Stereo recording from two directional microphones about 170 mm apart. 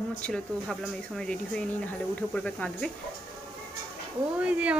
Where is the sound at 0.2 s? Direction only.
5° left (ahead or behind).